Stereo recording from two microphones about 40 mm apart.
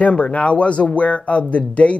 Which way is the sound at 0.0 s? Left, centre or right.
Left.